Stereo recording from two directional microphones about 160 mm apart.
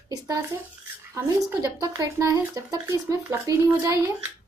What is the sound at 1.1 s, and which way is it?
A woman's voice, 20° right (ahead or behind).